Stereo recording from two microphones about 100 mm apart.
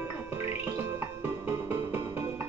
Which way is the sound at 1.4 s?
20° right (ahead or behind).